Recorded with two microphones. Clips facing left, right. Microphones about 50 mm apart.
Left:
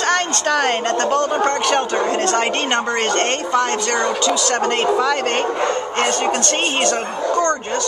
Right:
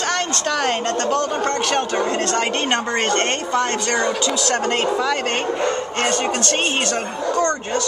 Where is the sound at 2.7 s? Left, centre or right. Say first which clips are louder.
Left 1 dB; centre.